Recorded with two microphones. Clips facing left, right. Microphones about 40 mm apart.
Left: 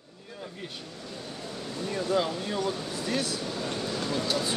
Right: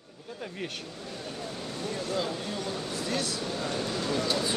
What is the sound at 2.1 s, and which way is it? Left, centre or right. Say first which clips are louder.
Speech: left 6 dB; centre.